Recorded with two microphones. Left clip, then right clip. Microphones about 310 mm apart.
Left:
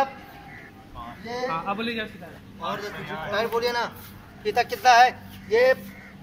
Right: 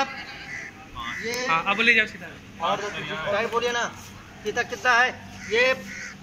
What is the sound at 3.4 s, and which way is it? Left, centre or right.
Speech, centre.